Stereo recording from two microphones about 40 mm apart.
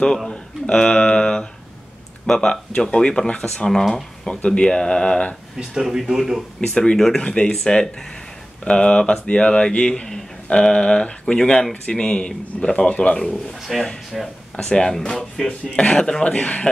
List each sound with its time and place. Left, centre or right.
0.3 s a sound: left
2.2 s speech: left
5.6 s speech: centre
6.6 s speech: centre
7.2 s speech: left
13.7 s speech: centre
14.6 s speech: centre
15.0 s speech: centre
15.8 s speech: centre
16.3 s speech: left